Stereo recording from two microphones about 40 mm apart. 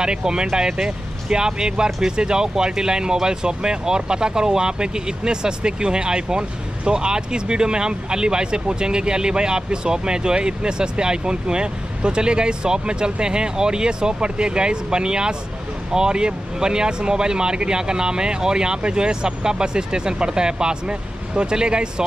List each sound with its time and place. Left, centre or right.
0.0 s speech: right